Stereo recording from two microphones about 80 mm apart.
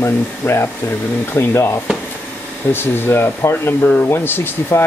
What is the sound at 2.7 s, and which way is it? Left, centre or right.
Speech, left.